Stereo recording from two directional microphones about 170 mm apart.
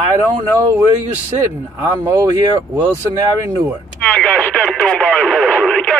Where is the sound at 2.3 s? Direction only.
20° right (ahead or behind).